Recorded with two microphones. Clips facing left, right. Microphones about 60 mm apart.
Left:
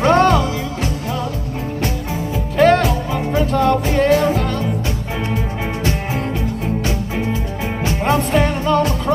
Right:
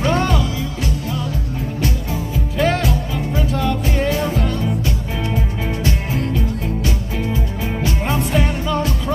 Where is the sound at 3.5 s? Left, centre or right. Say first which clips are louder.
Left 6 dB; left.